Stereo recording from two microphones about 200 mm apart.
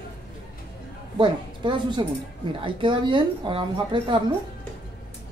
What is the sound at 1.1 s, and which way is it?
A woman's voice, 25° right (ahead or behind).